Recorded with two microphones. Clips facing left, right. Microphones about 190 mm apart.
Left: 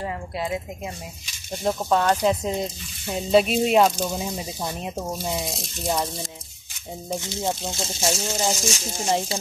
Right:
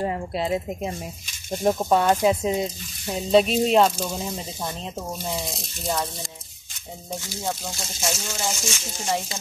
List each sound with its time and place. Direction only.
0.0 s a woman's voice: 30° right (ahead or behind)
1.6 s speech: 15° right (ahead or behind); by 5.3 s 15° left (ahead or behind)
7.2 s speech: 20° left (ahead or behind)